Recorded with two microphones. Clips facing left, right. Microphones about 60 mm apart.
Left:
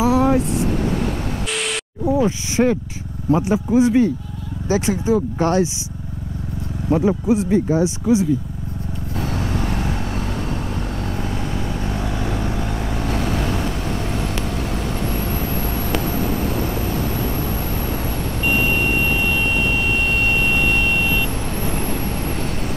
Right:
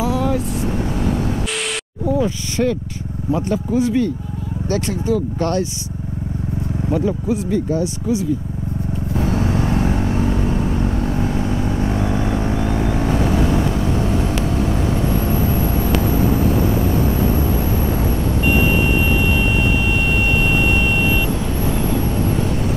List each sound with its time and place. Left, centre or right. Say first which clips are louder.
0.0 s vehicle: left 3 dB; left
2.0 s speech: left 1 dB; centre
7.0 s speech: left 4 dB; centre
9.2 s vehicle: right 4 dB; right
11.9 s vehicle: right 4 dB; right
16.2 s vehicle: right 5 dB; right
18.4 s vehicle: right 2 dB; left